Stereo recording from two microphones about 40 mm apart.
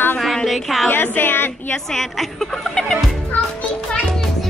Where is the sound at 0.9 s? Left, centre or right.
Left.